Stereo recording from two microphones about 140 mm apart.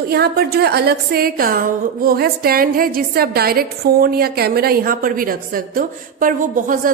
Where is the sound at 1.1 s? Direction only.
90° right.